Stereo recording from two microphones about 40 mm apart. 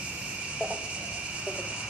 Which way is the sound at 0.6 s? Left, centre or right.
Right.